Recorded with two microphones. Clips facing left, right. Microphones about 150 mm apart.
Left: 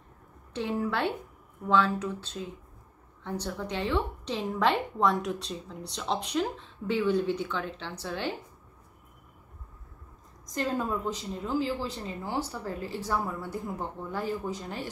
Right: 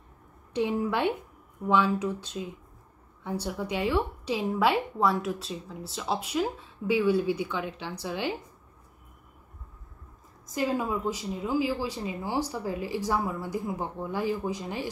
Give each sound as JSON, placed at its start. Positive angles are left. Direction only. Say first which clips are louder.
{"t": 0.5, "sound": "a woman's voice", "louder": "right 3 dB", "side_deg": -15}
{"t": 10.4, "sound": "a woman's voice", "louder": "right 2 dB", "side_deg": -5}